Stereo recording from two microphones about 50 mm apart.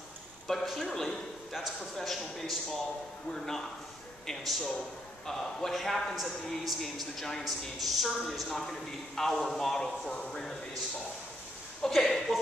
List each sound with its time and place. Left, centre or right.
0.5 s a man's voice: centre
8.5 s a man's voice: centre
11.8 s a man's voice: centre